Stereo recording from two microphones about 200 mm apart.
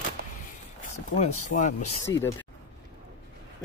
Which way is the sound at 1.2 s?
35° left (ahead or behind).